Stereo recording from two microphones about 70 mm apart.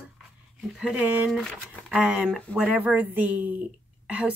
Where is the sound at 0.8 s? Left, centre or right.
Centre.